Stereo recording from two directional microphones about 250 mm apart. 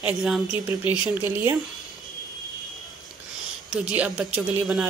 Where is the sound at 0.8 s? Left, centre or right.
Centre.